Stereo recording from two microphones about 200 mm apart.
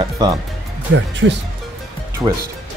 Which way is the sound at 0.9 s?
70° right (ahead or behind).